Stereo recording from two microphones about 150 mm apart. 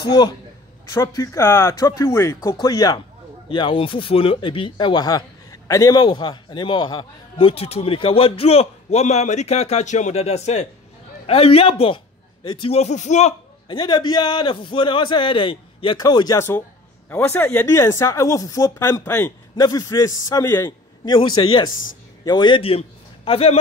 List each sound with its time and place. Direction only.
0.0 s speech: 30° left (ahead or behind); by 13.3 s 50° left (ahead or behind)
13.7 s a man's voice: 30° left (ahead or behind)